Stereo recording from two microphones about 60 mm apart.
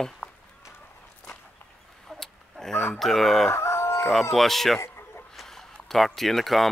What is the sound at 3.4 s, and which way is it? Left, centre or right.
Crowing, left.